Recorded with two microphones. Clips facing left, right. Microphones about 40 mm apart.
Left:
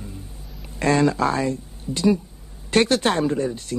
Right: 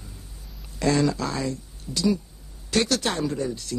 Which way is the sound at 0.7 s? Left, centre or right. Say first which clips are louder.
Left 4 dB; left.